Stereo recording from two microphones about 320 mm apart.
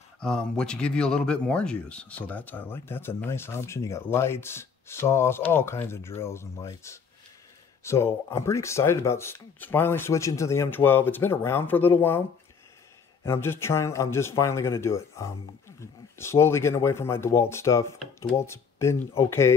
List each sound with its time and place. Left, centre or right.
0.2 s speech: centre
13.2 s speech: centre